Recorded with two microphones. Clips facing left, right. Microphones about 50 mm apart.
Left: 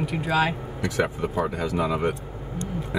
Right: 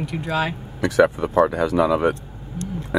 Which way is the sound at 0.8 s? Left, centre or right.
Right.